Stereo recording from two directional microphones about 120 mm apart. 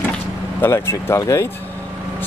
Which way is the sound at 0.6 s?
20° left (ahead or behind).